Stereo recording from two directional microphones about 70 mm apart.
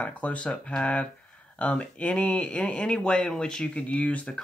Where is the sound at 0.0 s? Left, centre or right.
Centre.